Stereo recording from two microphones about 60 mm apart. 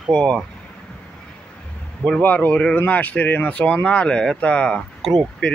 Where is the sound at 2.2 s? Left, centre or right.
Left.